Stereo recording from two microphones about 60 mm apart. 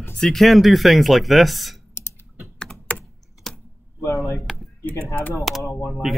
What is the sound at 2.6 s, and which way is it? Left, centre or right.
Typing, left.